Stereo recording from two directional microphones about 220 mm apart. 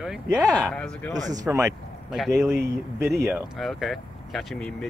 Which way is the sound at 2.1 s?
Centre (ahead or behind).